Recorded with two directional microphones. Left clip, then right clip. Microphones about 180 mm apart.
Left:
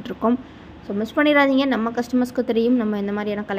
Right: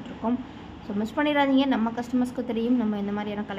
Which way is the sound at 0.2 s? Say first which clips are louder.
Left 7 dB; 35° left (ahead or behind).